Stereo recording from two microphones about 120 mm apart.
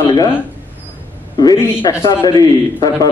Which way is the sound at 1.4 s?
30° left (ahead or behind).